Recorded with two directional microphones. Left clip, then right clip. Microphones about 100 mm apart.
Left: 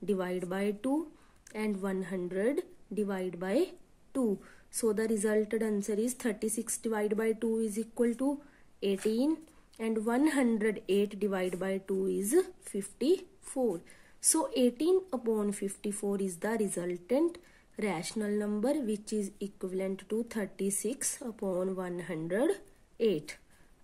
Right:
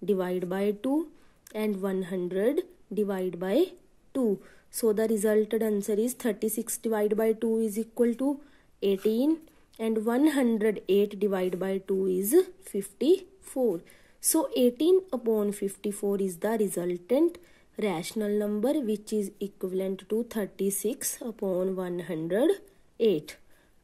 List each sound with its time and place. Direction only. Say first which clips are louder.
0.0 s speech: right 5 dB; 35° right (ahead or behind)